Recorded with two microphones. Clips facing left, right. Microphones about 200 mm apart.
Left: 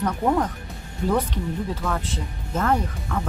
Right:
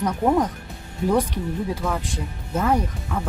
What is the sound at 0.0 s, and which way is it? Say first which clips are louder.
Speech: right 2 dB; 10° right (ahead or behind).